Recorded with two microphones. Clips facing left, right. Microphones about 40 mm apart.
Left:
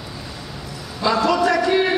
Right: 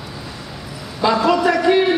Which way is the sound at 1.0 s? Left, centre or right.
Centre.